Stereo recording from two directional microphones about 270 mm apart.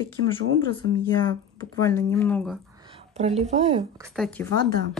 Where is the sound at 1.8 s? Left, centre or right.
Centre.